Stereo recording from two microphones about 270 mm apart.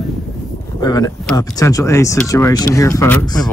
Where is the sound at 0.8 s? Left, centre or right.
Centre.